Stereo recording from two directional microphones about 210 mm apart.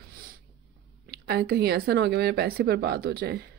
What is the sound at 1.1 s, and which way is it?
Speech, 50° right (ahead or behind).